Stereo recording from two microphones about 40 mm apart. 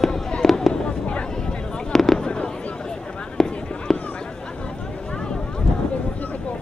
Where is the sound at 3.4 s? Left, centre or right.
Centre.